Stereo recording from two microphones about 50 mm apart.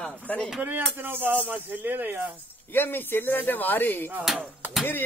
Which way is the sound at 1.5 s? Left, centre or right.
Right.